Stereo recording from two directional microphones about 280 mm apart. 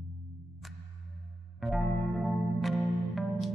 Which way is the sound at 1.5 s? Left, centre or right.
Centre.